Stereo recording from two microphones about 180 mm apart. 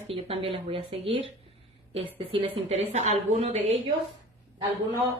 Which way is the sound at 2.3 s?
30° right (ahead or behind).